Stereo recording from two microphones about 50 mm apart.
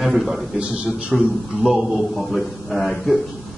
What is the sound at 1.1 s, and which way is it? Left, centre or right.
A man's voice, centre.